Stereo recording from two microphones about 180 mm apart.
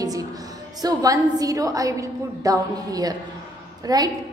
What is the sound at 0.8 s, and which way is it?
A woman's voice, 20° right (ahead or behind).